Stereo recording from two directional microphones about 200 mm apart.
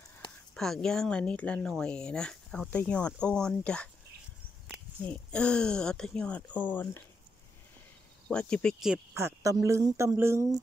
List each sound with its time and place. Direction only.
0.6 s speech: 5° left (ahead or behind)
5.0 s speech: 5° left (ahead or behind)
8.3 s speech: 5° left (ahead or behind)
9.1 s speech: 15° right (ahead or behind)